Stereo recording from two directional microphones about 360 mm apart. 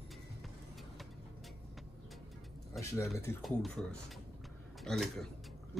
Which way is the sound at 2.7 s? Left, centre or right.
Centre.